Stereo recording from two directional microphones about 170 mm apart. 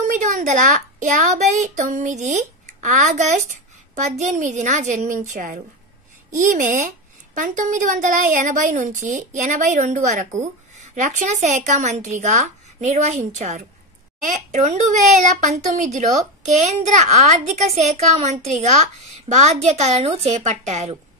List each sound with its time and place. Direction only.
0.0 s speech: 45° right (ahead or behind)